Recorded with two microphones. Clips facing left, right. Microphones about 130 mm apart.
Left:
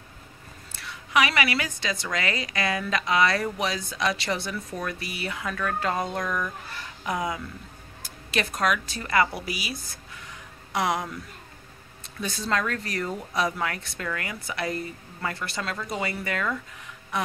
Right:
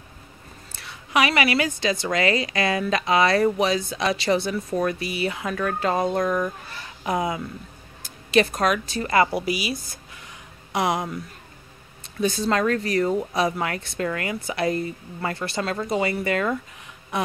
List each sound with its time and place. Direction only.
1.1 s a woman's voice: 25° right (ahead or behind)
6.2 s speech: 35° right (ahead or behind)
7.1 s a woman's voice: 25° right (ahead or behind)
10.7 s speech: 20° right (ahead or behind)
12.2 s a woman's voice: 25° right (ahead or behind)